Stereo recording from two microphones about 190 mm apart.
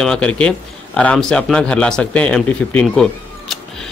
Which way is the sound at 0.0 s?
5° left (ahead or behind).